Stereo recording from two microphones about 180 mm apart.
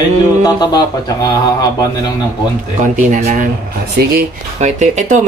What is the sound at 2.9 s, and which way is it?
Speech, 45° right (ahead or behind).